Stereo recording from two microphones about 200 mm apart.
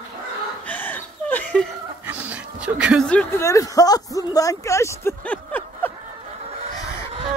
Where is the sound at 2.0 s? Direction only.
5° right (ahead or behind).